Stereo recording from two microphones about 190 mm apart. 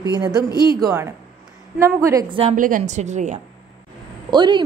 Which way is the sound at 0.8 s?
15° right (ahead or behind).